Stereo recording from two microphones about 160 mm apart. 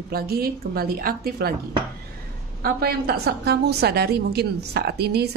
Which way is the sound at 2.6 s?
75° right (ahead or behind).